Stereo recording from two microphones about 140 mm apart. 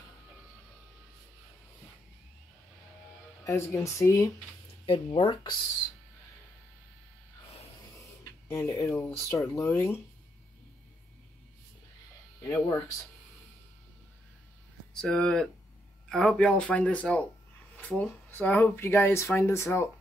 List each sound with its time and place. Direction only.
3.4 s speech: 20° left (ahead or behind)
4.8 s speech: 40° left (ahead or behind)
8.2 s speech: 20° left (ahead or behind)
12.4 s speech: 20° left (ahead or behind)
15.0 s speech: 5° left (ahead or behind)